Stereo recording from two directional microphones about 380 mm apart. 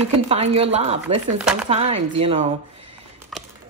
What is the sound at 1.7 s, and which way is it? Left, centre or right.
Speech, centre.